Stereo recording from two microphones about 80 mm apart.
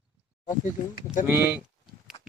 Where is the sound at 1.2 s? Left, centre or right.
Right.